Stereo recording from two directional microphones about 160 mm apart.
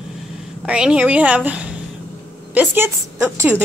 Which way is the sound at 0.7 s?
5° right (ahead or behind).